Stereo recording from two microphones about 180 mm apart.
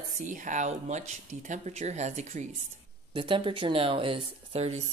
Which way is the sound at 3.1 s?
30° right (ahead or behind).